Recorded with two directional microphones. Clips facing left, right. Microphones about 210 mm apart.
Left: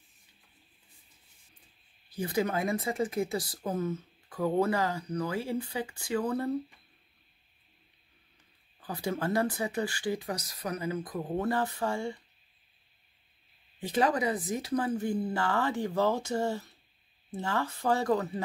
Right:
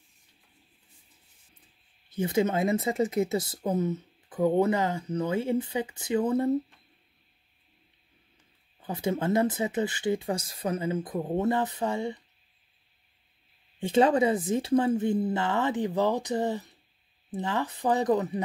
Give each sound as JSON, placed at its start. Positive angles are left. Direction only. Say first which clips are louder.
{"t": 2.0, "sound": "speech", "louder": "right 4 dB", "side_deg": -25}
{"t": 8.8, "sound": "speech", "louder": "right 4 dB", "side_deg": -20}
{"t": 13.7, "sound": "speech", "louder": "right 6 dB", "side_deg": -25}